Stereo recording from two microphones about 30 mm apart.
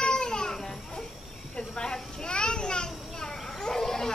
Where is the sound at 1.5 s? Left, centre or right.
Left.